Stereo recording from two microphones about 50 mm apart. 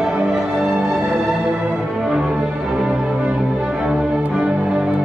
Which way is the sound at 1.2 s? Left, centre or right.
Centre.